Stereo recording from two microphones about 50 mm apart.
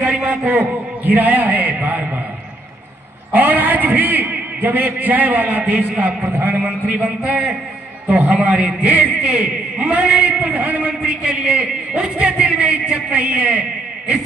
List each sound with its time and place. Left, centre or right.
0.0 s a sound: centre
0.4 s a man's voice: right
3.3 s a man's voice: right
6.2 s a man's voice: right
6.6 s a man's voice: right